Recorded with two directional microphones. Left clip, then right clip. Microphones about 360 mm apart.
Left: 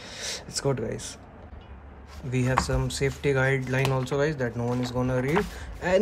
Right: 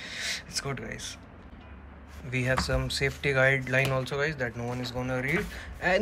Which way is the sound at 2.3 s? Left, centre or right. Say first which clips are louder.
Left 2 dB; centre.